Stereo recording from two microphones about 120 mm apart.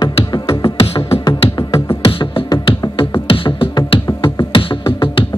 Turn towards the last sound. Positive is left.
turn(degrees=45)  # may be behind; listen again after turning